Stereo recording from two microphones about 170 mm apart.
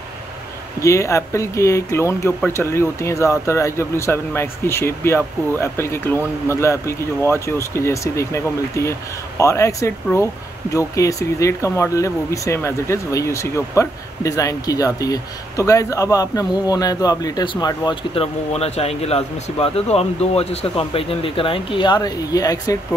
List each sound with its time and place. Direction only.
0.7 s speech: 15° left (ahead or behind)